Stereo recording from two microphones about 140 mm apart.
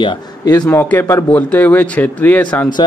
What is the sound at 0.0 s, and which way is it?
Speech, 30° left (ahead or behind).